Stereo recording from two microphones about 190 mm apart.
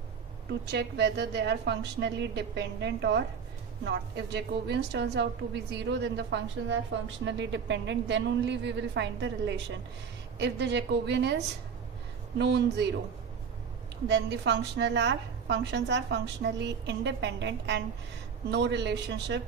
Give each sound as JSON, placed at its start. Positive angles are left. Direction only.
{"t": 0.5, "sound": "a woman's voice", "side_deg": -60}
{"t": 14.0, "sound": "a woman's voice", "side_deg": -65}